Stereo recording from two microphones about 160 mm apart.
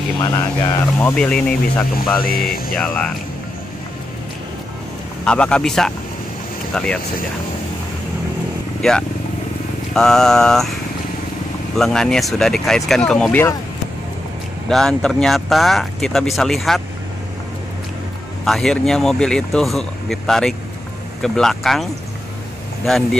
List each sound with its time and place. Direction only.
0.2 s speech: 20° left (ahead or behind)
2.2 s speech: 65° left (ahead or behind)
2.7 s speech: 5° left (ahead or behind)
5.2 s speech: 5° left (ahead or behind)
8.8 s speech: 5° left (ahead or behind)
14.7 s speech: centre (ahead or behind)
18.4 s speech: centre (ahead or behind)